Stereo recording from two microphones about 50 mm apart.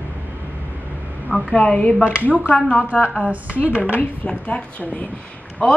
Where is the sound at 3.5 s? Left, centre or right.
Left.